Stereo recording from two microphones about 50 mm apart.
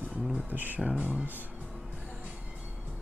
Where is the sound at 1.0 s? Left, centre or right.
Centre.